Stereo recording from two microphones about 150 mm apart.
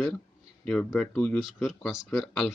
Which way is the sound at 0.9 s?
5° left (ahead or behind).